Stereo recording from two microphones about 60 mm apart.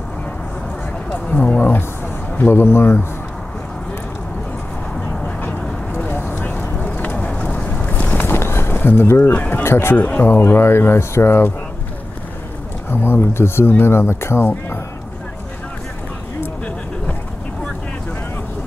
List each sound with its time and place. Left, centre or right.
1.1 s a sound: left
2.3 s speech: left
5.2 s duck: left
6.0 s a sound: left
9.3 s speech: left
9.6 s speech: left
9.9 s speech: left
12.9 s speech: left